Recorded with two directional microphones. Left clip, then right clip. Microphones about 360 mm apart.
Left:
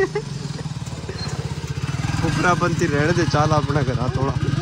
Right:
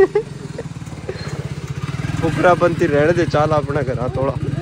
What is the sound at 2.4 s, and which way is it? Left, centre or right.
Speech, centre.